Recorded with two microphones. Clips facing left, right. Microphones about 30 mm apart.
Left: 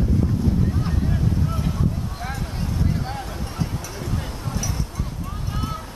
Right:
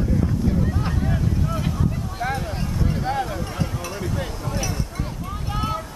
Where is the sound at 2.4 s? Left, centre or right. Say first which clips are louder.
Right 1 dB; centre.